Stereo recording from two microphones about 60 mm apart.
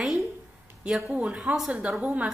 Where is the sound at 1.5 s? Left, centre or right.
Centre.